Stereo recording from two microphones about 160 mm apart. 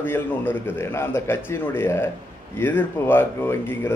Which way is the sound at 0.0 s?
15° left (ahead or behind).